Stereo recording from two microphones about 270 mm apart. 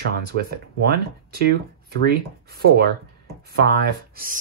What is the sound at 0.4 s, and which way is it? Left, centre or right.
Speech, right.